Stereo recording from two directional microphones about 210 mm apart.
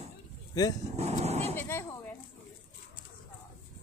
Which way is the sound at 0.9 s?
30° right (ahead or behind).